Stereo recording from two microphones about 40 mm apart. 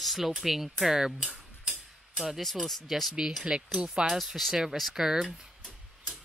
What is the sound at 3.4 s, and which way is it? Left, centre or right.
Speech, centre.